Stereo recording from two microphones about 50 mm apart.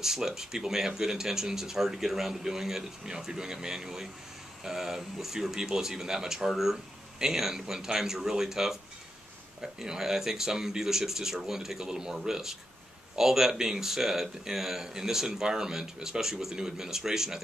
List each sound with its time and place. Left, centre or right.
0.0 s speech: centre